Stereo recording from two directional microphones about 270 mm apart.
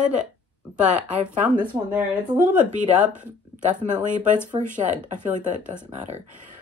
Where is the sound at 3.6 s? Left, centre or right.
Right.